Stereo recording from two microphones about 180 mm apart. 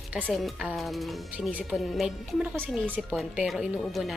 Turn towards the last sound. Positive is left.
turn(degrees=0)  # may be behind; listen again after turning